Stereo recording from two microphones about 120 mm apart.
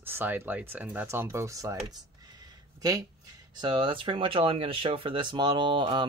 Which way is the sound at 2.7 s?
30° right (ahead or behind).